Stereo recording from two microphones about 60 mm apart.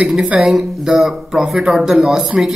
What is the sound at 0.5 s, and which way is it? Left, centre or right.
A man's voice, centre.